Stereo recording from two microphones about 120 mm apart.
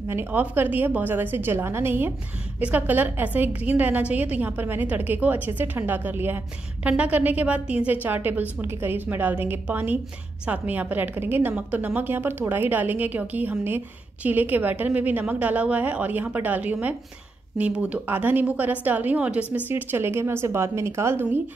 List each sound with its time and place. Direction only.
0.1 s a woman's voice: 15° right (ahead or behind)